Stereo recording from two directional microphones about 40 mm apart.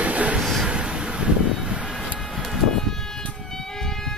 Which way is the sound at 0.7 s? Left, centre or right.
Right.